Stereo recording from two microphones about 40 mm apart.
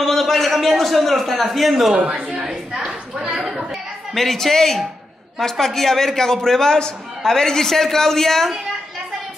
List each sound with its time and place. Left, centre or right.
0.0 s a man's voice: centre
2.0 s a woman's voice: right
3.3 s a woman's voice: centre
4.1 s a man's voice: centre